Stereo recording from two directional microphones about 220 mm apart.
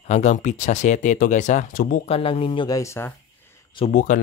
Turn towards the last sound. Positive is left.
turn(degrees=40)  # may be behind; listen again after turning